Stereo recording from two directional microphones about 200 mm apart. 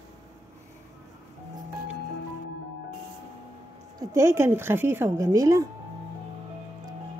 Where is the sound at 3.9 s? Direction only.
15° right (ahead or behind).